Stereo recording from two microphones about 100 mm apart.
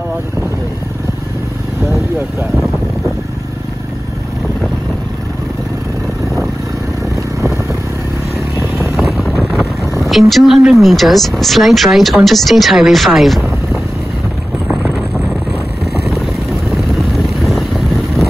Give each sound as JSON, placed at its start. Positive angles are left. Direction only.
{"t": 8.9, "sound": "vehicle", "side_deg": 0}
{"t": 9.4, "sound": "speech", "side_deg": 0}
{"t": 14.7, "sound": "boat", "side_deg": -5}
{"t": 16.7, "sound": "vehicle", "side_deg": 0}